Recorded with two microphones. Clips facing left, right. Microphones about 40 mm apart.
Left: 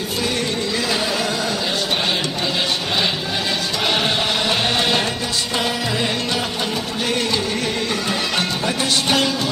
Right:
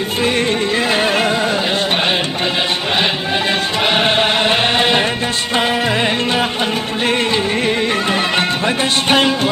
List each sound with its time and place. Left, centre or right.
0.9 s music: right
3.8 s music: right
7.6 s music: right